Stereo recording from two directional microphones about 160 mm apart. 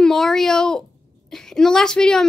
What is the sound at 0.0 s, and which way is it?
A woman's voice, 5° left (ahead or behind).